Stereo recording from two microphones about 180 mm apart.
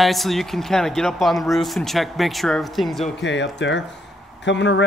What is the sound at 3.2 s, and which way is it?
Speech, 85° left.